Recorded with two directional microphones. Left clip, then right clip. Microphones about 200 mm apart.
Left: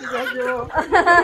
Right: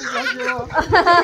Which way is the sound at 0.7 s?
40° right (ahead or behind).